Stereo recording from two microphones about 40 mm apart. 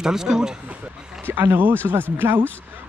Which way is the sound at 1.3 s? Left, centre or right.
Right.